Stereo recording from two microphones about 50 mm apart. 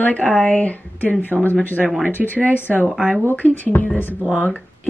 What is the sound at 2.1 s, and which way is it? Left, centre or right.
Speech, left.